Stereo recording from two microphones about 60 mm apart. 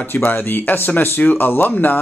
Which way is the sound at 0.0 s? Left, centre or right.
Left.